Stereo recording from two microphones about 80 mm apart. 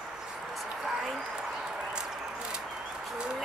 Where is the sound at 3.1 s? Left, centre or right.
Centre.